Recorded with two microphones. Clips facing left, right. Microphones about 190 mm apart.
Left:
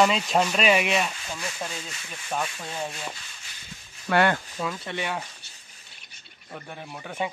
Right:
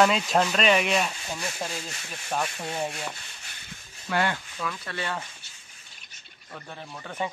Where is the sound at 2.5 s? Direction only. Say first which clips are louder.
Right 2 dB; 20° right (ahead or behind).